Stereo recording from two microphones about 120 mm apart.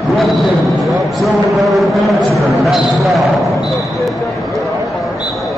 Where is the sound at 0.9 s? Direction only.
Centre (ahead or behind).